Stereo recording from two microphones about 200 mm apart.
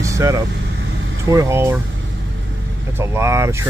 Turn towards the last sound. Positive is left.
turn(degrees=-15)  # may be behind; listen again after turning